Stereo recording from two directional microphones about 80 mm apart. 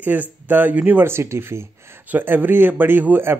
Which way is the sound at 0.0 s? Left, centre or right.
Right.